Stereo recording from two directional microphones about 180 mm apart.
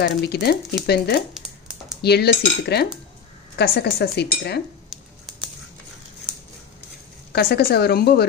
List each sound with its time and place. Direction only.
0.0 s speech: 65° left (ahead or behind)
4.8 s a sound: centre (ahead or behind)
7.3 s speech: 60° left (ahead or behind)